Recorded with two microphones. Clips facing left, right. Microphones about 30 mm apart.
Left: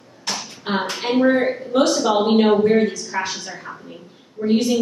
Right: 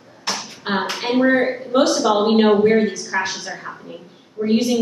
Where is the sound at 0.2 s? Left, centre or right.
Centre.